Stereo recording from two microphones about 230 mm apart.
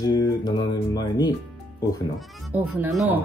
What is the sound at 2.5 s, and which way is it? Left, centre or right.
Speech, centre.